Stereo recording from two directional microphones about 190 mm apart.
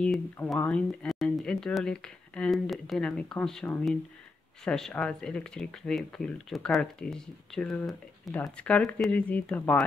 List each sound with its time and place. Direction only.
0.0 s speech: 5° left (ahead or behind)